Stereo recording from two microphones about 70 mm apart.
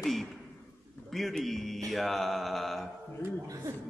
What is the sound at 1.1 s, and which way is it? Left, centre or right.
Speech, centre.